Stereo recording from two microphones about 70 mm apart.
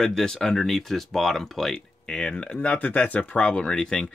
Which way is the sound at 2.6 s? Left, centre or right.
Left.